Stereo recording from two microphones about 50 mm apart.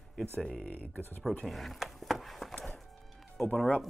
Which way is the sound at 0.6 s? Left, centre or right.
Left.